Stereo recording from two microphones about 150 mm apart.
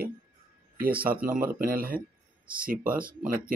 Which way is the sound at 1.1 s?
70° right (ahead or behind).